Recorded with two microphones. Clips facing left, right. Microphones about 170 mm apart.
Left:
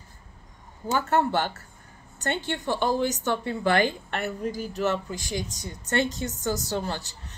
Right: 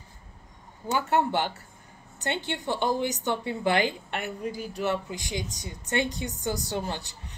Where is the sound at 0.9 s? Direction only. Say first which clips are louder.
Left 1 dB; 15° right (ahead or behind).